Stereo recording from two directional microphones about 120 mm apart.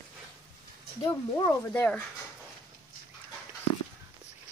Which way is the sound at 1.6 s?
10° left (ahead or behind).